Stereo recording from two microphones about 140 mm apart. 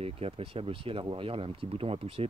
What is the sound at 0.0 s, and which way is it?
Speech, 45° right (ahead or behind).